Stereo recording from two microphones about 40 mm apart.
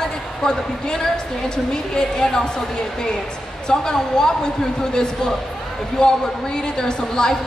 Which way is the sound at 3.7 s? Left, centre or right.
Centre.